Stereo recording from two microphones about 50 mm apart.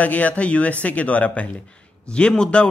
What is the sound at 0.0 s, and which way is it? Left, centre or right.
Speech, left.